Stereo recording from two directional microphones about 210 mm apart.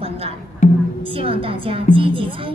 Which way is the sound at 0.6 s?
35° left (ahead or behind).